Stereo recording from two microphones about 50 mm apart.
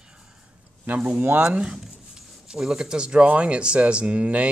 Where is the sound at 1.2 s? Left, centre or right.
Right.